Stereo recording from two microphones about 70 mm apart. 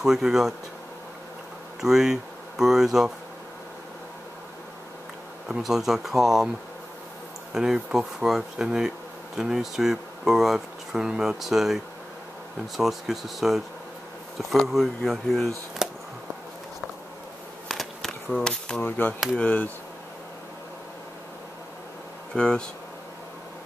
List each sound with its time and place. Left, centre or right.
0.0 s speech: centre
1.8 s speech: centre
5.5 s speech: centre
7.5 s speech: centre
15.8 s a sound: centre
17.6 s bee: centre
18.4 s speech: centre
18.8 s speech: left
22.3 s speech: centre